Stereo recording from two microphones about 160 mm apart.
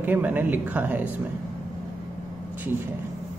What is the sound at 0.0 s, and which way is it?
Speech, 10° right (ahead or behind).